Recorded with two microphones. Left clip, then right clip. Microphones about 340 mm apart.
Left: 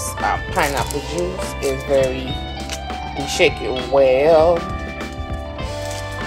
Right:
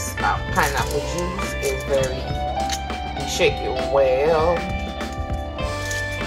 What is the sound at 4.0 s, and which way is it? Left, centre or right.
Speech, left.